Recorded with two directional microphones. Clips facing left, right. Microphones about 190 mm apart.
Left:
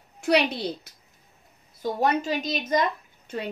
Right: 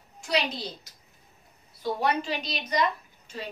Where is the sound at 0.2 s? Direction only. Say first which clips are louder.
Left 6 dB; 60° left (ahead or behind).